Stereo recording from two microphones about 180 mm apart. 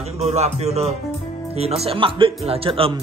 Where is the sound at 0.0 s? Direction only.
35° right (ahead or behind).